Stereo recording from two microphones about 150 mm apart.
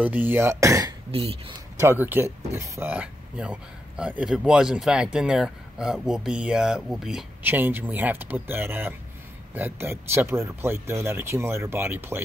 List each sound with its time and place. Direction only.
0.0 s speech: 10° right (ahead or behind)
7.4 s speech: 15° right (ahead or behind)